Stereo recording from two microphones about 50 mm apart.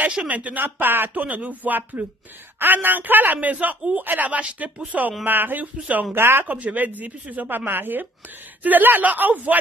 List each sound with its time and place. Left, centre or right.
0.1 s speech: right
0.7 s speech: right
5.2 s speech: right
5.8 s speech: right
6.1 s speech: right
6.4 s speech: right